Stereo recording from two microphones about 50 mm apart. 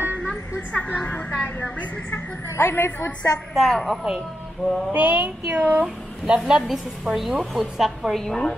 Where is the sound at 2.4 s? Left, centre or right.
Left.